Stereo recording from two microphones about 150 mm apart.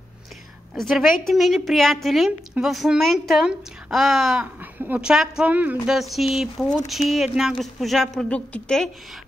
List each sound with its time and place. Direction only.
0.7 s a woman's voice: 5° left (ahead or behind)